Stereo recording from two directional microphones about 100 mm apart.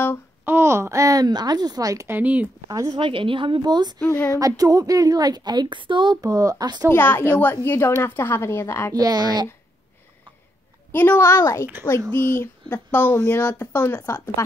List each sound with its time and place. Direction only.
0.5 s speech: 25° right (ahead or behind)
2.0 s speech: 15° right (ahead or behind)
2.7 s a woman's voice: 35° right (ahead or behind)
3.0 s a woman's voice: 60° right (ahead or behind)
4.0 s speech: 20° left (ahead or behind)
4.3 s a woman's voice: 35° right (ahead or behind); by 6.1 s 55° right (ahead or behind)
6.2 s a woman's voice: 35° right (ahead or behind)
6.9 s speech: 20° left (ahead or behind)
8.9 s a woman's voice: 40° right (ahead or behind)
10.9 s a woman's voice: 20° left (ahead or behind)
11.2 s a woman's voice: 30° left (ahead or behind)